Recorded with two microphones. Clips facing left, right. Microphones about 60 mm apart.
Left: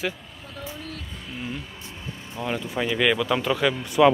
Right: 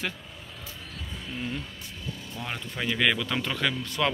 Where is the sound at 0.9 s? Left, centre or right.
Centre.